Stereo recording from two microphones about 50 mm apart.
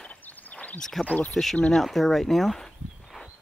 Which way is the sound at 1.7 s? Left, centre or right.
Centre.